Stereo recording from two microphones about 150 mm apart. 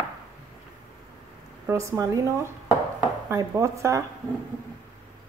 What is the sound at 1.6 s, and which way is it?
A woman's voice, 20° right (ahead or behind).